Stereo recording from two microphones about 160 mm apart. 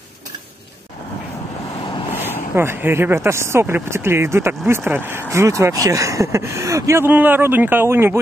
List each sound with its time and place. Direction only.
2.5 s speech: 15° right (ahead or behind)